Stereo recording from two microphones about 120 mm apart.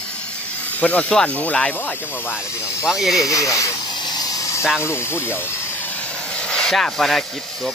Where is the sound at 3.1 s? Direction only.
25° left (ahead or behind).